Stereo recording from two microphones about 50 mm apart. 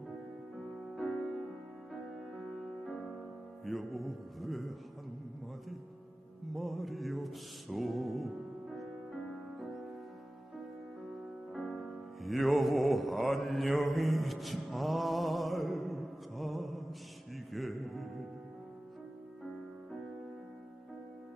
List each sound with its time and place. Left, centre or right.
0.9 s music: centre
3.6 s speech: centre
6.5 s music: centre
11.9 s music: centre